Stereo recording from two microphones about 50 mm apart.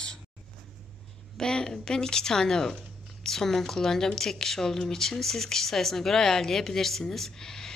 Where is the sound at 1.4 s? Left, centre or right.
Centre.